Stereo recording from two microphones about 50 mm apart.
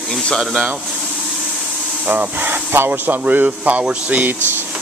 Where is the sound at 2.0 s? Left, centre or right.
Right.